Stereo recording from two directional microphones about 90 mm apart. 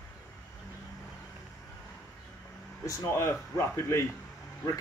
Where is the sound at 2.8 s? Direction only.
35° left (ahead or behind).